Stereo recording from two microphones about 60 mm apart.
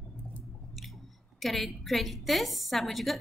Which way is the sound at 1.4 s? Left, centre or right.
Centre.